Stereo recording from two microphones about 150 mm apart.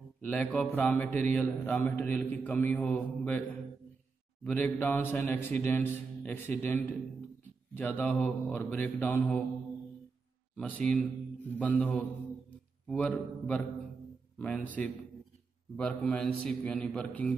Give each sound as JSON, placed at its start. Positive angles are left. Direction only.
{"t": 0.2, "sound": "a man's voice", "side_deg": 10}
{"t": 10.5, "sound": "a man's voice", "side_deg": 5}